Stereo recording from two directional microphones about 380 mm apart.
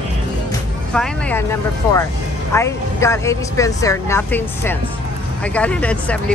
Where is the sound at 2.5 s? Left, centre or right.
Centre.